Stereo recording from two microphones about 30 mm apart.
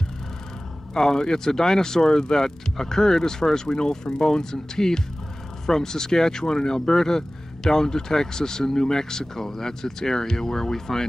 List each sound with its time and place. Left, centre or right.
1.1 s speech: left